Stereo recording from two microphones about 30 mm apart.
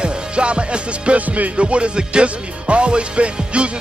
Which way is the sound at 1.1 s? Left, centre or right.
Right.